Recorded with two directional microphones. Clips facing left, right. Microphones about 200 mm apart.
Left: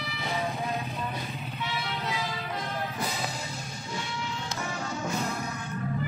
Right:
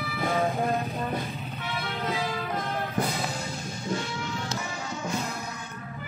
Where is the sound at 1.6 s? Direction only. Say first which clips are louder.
Right 2 dB; 50° right (ahead or behind).